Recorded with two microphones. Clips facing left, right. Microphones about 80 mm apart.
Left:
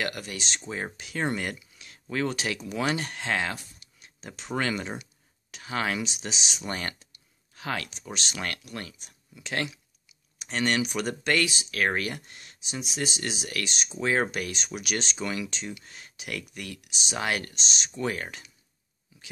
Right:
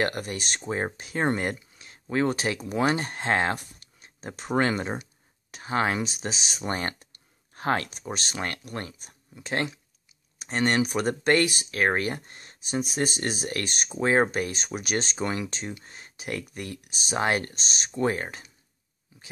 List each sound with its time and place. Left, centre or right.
0.0 s speech: right
0.6 s speech: right
6.7 s speech: right
7.0 s clicking: right
8.4 s speech: right
13.9 s speech: right
17.6 s speech: right
18.0 s speech: right